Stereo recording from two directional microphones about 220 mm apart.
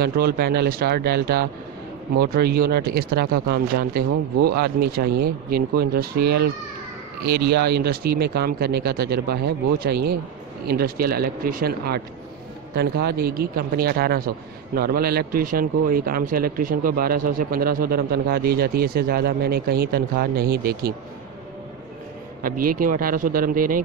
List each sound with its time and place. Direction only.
0.0 s speech: 45° right (ahead or behind)
7.2 s speech: 50° right (ahead or behind)
22.7 s speech: 40° right (ahead or behind)